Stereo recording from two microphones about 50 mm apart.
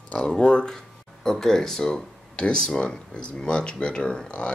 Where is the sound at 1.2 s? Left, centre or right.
Centre.